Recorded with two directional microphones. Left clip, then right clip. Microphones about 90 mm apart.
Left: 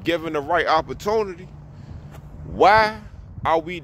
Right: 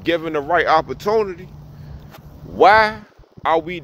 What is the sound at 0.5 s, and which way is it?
Speech, 20° left (ahead or behind).